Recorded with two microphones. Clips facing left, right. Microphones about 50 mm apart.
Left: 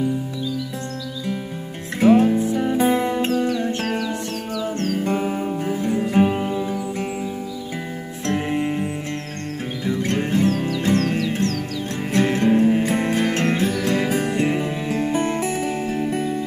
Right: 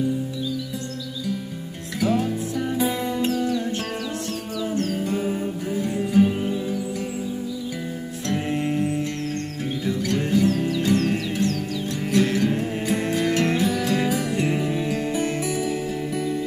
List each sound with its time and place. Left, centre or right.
2.0 s music: left
4.6 s music: centre
5.0 s music: left
8.5 s music: centre
9.8 s music: left
11.0 s music: centre
12.1 s music: left
14.5 s music: left
14.9 s music: left